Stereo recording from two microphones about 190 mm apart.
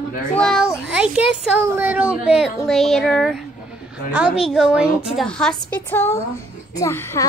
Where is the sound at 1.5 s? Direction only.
10° right (ahead or behind).